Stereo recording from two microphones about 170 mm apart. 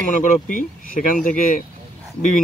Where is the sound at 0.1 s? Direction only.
50° left (ahead or behind).